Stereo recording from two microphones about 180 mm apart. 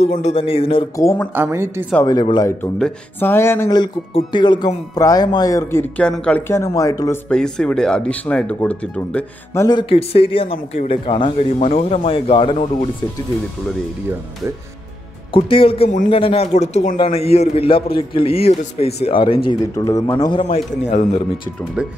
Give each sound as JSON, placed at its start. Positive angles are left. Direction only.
{"t": 0.0, "sound": "speech", "side_deg": 35}
{"t": 0.9, "sound": "speech", "side_deg": 10}
{"t": 1.3, "sound": "a woman's voice", "side_deg": -10}
{"t": 2.2, "sound": "a man's voice", "side_deg": 25}
{"t": 2.6, "sound": "speech", "side_deg": 10}
{"t": 7.2, "sound": "speech", "side_deg": 5}
{"t": 15.3, "sound": "speech", "side_deg": 30}
{"t": 19.6, "sound": "a man's voice", "side_deg": 20}
{"t": 21.8, "sound": "speech", "side_deg": -5}